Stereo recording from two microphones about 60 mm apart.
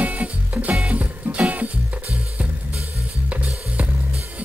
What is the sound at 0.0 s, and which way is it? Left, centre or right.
Music, right.